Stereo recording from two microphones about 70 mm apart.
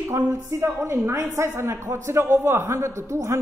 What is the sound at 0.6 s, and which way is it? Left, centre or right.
A man's voice, right.